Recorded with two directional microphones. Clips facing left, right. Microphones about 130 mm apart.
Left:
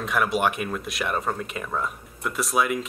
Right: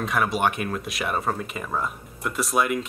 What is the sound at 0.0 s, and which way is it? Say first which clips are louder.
Speech: even; centre (ahead or behind).